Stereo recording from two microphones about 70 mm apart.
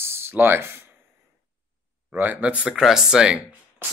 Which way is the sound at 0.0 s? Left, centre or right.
Right.